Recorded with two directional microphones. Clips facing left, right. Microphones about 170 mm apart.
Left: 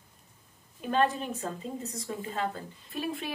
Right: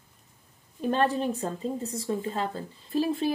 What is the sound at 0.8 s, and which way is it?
Speech, 40° right (ahead or behind).